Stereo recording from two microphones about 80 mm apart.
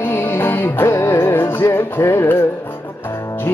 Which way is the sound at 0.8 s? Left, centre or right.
Left.